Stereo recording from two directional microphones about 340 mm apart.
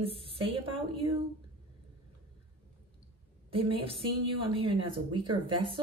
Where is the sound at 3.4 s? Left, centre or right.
Centre.